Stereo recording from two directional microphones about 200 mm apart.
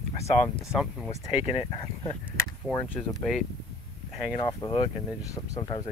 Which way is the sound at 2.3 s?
10° left (ahead or behind).